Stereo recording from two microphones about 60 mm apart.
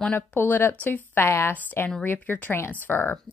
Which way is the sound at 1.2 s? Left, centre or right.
Left.